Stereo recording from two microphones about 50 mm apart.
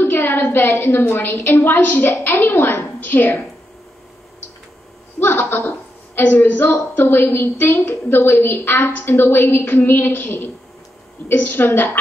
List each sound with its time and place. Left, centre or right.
0.0 s a woman's voice: left
5.2 s a woman's voice: left